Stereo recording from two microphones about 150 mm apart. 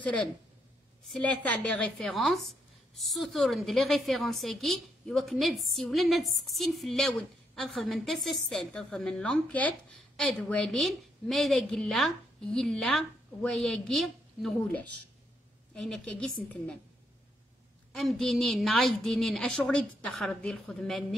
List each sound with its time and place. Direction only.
0.0 s a woman's voice: 5° left (ahead or behind)
17.9 s a woman's voice: centre (ahead or behind)